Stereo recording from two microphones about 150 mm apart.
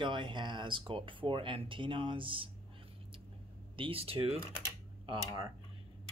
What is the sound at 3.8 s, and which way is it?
Speech, 40° right (ahead or behind).